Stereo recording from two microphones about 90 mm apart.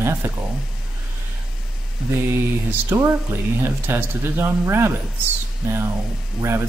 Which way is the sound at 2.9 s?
30° right (ahead or behind).